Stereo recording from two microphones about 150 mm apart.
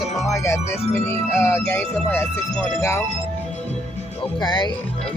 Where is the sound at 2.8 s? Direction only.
15° left (ahead or behind).